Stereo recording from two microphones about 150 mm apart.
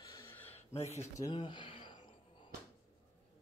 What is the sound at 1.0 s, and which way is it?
Speech, 20° left (ahead or behind).